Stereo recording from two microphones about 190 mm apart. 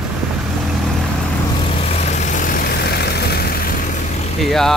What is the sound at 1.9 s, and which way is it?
Vehicle, 35° left (ahead or behind).